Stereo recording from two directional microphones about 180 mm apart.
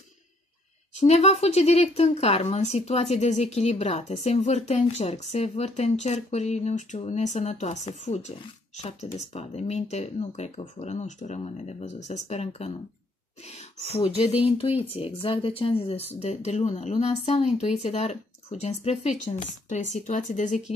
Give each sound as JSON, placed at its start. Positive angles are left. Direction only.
{"t": 0.9, "sound": "speech", "side_deg": 40}